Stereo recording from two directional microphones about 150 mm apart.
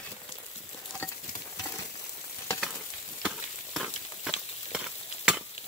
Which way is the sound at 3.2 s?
Centre (ahead or behind).